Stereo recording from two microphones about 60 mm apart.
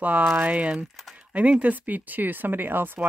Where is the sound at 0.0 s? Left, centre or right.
Right.